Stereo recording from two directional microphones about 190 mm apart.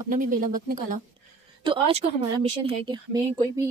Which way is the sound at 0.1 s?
45° right (ahead or behind).